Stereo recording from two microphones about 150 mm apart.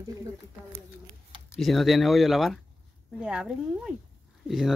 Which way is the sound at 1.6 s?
Centre (ahead or behind).